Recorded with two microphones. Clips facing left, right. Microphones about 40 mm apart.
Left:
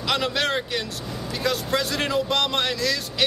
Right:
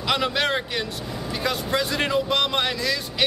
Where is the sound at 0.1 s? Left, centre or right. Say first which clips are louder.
Right 1 dB; centre.